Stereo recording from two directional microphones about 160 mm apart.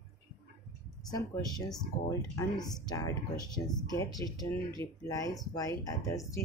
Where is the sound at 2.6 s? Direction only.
25° left (ahead or behind).